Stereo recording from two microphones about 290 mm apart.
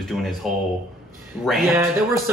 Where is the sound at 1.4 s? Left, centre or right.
Centre.